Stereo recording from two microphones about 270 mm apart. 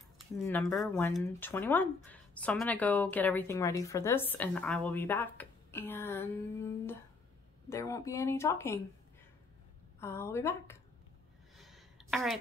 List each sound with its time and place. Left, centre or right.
0.4 s speech: centre
9.9 s speech: centre
11.5 s a sound: centre